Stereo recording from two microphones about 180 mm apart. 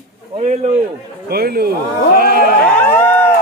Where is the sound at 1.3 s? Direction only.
60° right (ahead or behind).